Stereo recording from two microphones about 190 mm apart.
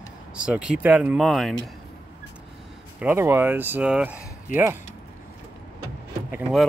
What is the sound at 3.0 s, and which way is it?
Speech, 10° right (ahead or behind).